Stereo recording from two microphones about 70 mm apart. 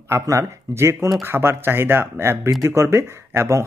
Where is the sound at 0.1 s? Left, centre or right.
Right.